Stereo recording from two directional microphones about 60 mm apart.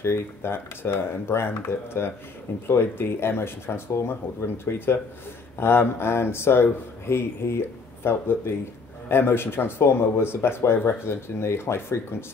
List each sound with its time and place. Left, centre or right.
0.0 s speech: left